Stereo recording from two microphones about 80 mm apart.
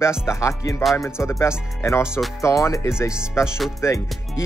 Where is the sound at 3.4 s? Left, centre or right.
Centre.